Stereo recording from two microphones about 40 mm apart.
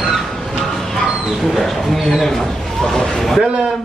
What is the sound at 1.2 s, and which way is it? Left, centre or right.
Speech, centre.